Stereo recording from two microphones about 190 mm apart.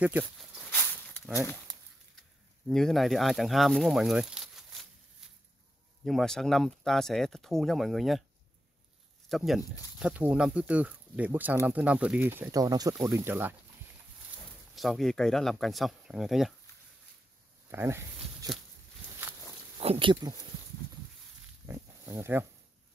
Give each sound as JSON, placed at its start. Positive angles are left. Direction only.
{"t": 0.0, "sound": "speech", "side_deg": -5}
{"t": 0.7, "sound": "a sound", "side_deg": 10}
{"t": 2.7, "sound": "speech", "side_deg": 0}
{"t": 6.0, "sound": "speech", "side_deg": 0}
{"t": 9.3, "sound": "speech", "side_deg": 0}
{"t": 14.8, "sound": "speech", "side_deg": 0}
{"t": 17.6, "sound": "a sound", "side_deg": -10}
{"t": 19.8, "sound": "speech", "side_deg": -30}
{"t": 21.6, "sound": "pig", "side_deg": -15}